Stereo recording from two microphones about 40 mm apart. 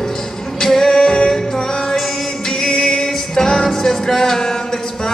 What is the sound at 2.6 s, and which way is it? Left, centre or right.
Music, centre.